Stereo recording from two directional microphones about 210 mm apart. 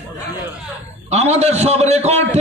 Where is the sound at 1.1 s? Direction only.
30° right (ahead or behind).